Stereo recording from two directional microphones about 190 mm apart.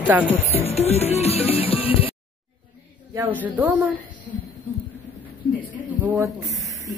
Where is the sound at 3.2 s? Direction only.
10° right (ahead or behind).